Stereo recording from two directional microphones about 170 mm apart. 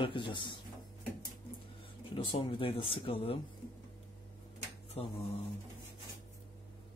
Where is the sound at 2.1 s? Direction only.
30° left (ahead or behind).